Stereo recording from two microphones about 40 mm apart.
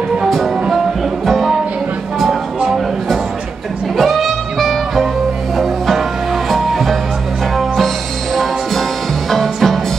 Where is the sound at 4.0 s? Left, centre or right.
Centre.